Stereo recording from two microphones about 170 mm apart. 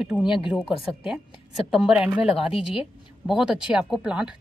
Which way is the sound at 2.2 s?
35° left (ahead or behind).